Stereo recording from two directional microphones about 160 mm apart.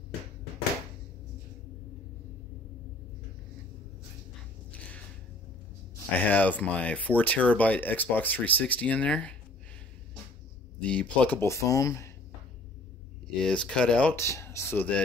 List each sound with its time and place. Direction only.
4.6 s a sound: 10° left (ahead or behind)
6.2 s speech: 10° left (ahead or behind)
10.8 s speech: 5° left (ahead or behind)
13.4 s speech: 5° left (ahead or behind)